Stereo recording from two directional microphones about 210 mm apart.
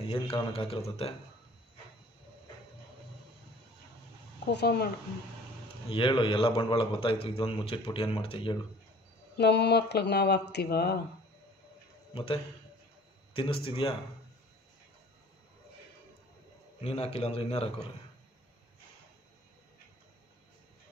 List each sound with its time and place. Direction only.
0.1 s a man's voice: 25° left (ahead or behind)
4.5 s speech: 50° left (ahead or behind)
5.9 s a man's voice: 25° left (ahead or behind)
9.4 s speech: 55° left (ahead or behind)
12.1 s a man's voice: 25° left (ahead or behind)
16.8 s a man's voice: 30° left (ahead or behind)